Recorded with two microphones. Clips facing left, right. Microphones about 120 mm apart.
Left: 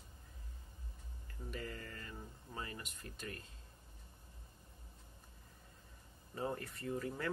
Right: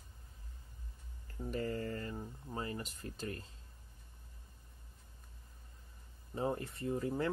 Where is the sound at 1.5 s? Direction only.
35° right (ahead or behind).